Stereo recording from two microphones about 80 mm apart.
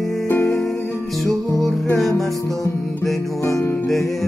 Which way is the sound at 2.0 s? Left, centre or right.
Centre.